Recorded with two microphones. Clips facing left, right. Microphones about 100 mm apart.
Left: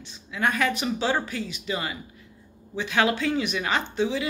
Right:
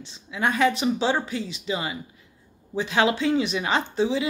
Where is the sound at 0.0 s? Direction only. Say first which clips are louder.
Right 1 dB; 25° right (ahead or behind).